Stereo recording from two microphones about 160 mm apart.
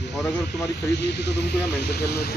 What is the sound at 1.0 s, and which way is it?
Speech, 90° left.